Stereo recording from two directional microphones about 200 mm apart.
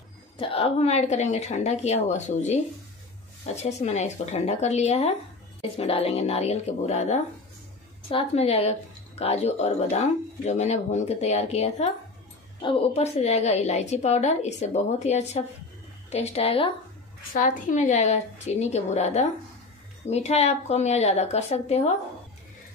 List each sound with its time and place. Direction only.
0.4 s a woman's voice: 30° left (ahead or behind)
17.3 s a woman's voice: 40° left (ahead or behind)